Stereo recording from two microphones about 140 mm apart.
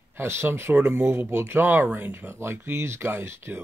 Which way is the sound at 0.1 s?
15° right (ahead or behind).